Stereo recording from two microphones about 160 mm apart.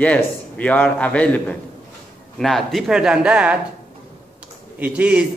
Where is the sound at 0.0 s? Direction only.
10° left (ahead or behind).